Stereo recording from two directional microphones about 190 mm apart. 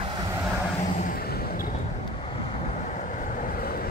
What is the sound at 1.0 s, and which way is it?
Vehicle, 50° left (ahead or behind).